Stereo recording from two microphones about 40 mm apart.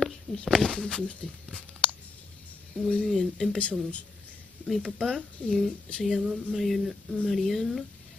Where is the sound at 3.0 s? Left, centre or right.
Centre.